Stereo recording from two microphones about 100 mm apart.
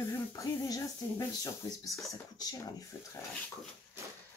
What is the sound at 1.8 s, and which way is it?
Speech, centre (ahead or behind).